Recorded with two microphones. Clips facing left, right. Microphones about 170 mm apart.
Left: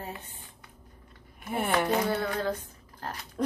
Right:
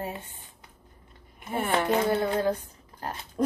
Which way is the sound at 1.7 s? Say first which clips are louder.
Right 3 dB; 25° right (ahead or behind).